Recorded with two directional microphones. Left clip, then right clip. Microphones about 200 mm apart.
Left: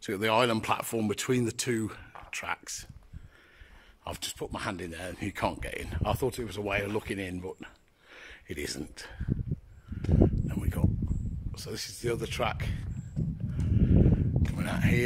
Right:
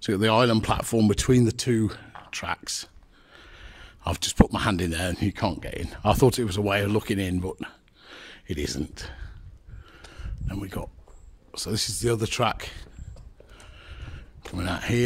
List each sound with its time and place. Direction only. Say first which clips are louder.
0.0 s speech: right 5 dB; 25° right (ahead or behind)
4.0 s speech: right 12 dB; 35° right (ahead or behind)
5.2 s speech: right 4 dB; 15° right (ahead or behind)
6.1 s speech: right 10 dB; 45° right (ahead or behind); by 12.8 s 20° right (ahead or behind)
13.6 s a sound: left 18 dB; 25° right (ahead or behind)